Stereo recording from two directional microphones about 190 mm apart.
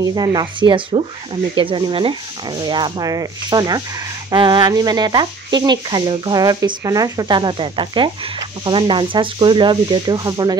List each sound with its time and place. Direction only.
0.0 s speech: 20° right (ahead or behind)